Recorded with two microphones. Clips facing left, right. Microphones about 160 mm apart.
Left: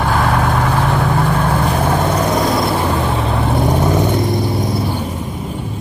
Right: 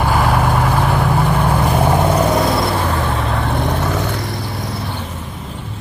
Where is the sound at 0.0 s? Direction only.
5° right (ahead or behind).